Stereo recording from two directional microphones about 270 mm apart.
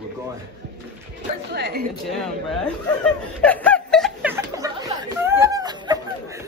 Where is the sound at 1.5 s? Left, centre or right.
Right.